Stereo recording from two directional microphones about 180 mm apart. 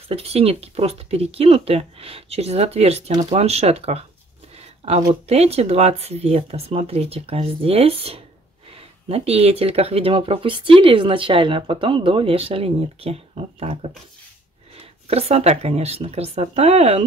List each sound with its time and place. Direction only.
0.1 s speech: 35° right (ahead or behind)
4.6 s a sound: 35° right (ahead or behind)
5.3 s speech: 35° right (ahead or behind)